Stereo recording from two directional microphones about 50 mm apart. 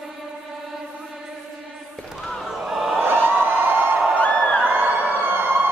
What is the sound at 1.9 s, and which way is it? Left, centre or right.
Basketball bounce, centre.